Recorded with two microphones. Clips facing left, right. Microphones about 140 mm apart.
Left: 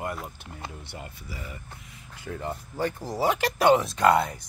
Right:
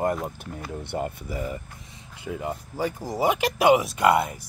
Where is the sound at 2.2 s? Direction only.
10° right (ahead or behind).